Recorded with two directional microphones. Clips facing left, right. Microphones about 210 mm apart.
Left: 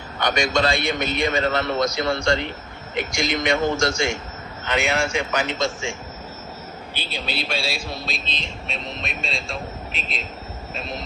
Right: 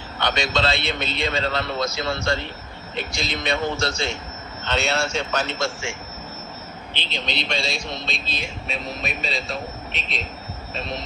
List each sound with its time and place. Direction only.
0.2 s a man's voice: 15° left (ahead or behind)
7.0 s a man's voice: 10° left (ahead or behind)